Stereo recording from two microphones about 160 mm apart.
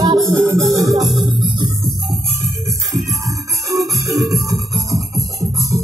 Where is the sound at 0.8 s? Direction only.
Centre (ahead or behind).